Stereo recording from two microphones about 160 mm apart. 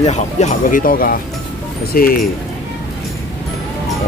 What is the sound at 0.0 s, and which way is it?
Speech, 45° left (ahead or behind).